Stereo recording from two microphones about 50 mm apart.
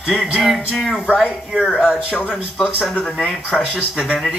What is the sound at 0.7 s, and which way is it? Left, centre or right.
Speech, centre.